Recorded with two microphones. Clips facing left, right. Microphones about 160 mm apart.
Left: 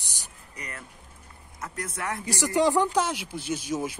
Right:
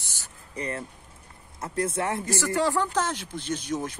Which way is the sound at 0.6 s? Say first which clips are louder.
Right 9 dB; 30° right (ahead or behind).